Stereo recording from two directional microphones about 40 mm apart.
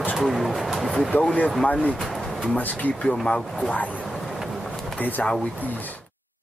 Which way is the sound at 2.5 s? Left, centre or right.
Left.